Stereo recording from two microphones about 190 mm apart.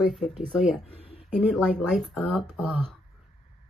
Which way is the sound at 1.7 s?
Centre (ahead or behind).